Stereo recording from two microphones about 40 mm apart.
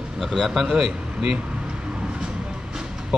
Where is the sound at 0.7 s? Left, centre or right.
Right.